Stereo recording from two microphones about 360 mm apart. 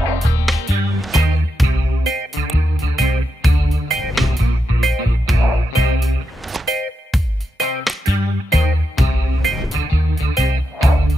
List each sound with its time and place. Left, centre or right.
0.5 s music: centre